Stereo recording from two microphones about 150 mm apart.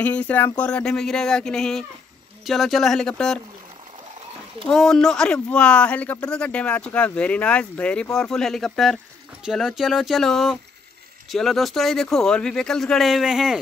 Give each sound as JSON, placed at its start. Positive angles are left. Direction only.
{"t": 0.0, "sound": "speech", "side_deg": 10}
{"t": 4.6, "sound": "speech", "side_deg": 5}